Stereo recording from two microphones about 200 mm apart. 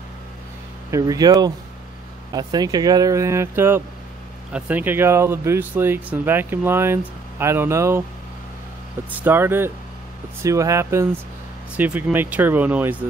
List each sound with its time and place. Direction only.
0.9 s speech: 20° right (ahead or behind)
9.1 s speech: 10° right (ahead or behind)